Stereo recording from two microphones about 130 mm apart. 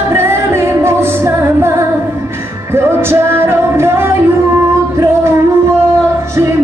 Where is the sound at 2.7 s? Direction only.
20° right (ahead or behind).